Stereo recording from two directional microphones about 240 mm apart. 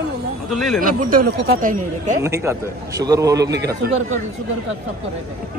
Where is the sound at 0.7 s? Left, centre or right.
Right.